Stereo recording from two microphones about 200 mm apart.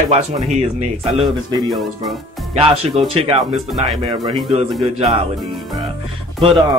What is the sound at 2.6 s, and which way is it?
A man's voice, 25° right (ahead or behind).